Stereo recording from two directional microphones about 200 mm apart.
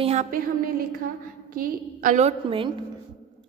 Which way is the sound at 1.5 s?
45° right (ahead or behind).